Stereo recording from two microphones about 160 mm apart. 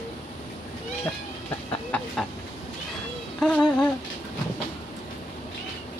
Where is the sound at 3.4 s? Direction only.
5° left (ahead or behind).